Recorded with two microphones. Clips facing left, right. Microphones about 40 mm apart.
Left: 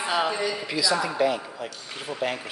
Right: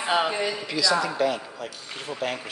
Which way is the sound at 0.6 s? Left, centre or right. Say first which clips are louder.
Right 1 dB; centre.